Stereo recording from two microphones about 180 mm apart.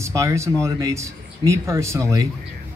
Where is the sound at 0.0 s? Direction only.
15° right (ahead or behind).